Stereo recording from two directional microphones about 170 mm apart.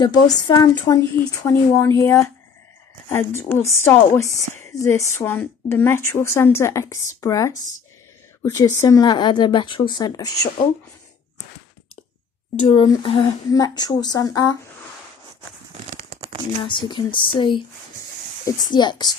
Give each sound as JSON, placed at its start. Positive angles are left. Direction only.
{"t": 0.0, "sound": "a woman's voice", "side_deg": 25}
{"t": 12.6, "sound": "a woman's voice", "side_deg": 30}
{"t": 16.6, "sound": "a woman's voice", "side_deg": 30}